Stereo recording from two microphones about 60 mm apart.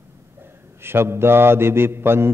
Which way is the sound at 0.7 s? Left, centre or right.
Right.